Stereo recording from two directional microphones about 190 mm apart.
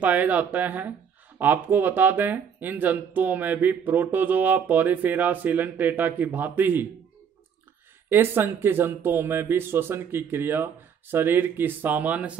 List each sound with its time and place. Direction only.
0.0 s speech: 10° right (ahead or behind)
8.1 s speech: 10° right (ahead or behind)